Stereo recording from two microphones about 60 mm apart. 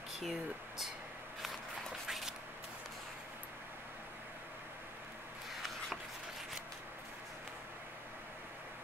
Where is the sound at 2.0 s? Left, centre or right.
Centre.